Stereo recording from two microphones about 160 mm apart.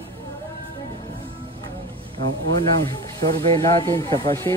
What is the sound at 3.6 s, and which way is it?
Speech, 20° left (ahead or behind).